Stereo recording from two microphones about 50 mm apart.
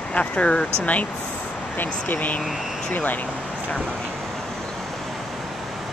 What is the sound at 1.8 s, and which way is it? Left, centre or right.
Speech, left.